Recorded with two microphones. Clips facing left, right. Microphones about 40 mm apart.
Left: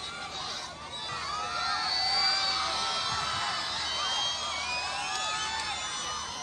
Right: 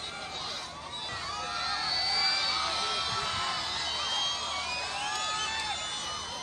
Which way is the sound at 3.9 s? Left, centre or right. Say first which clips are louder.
Left 1 dB; right.